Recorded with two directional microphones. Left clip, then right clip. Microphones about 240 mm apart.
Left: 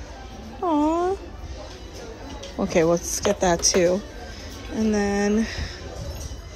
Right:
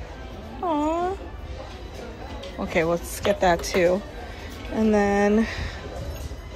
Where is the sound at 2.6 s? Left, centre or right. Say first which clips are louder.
Left 3 dB; centre.